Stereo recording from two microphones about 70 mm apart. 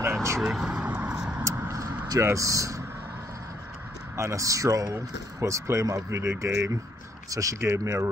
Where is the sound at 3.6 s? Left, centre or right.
Right.